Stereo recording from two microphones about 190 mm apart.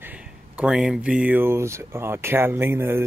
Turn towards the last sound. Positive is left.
turn(degrees=-10)  # may be behind; listen again after turning